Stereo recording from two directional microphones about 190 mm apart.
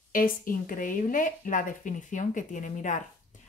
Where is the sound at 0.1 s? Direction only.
45° left (ahead or behind).